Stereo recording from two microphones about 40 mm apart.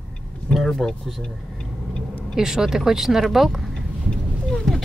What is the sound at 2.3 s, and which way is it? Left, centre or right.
Speech, centre.